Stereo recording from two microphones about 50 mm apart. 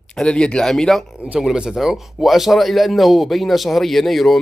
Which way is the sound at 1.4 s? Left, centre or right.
Centre.